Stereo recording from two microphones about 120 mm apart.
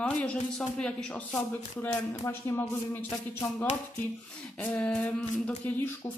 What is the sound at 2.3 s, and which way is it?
Speech, 15° left (ahead or behind).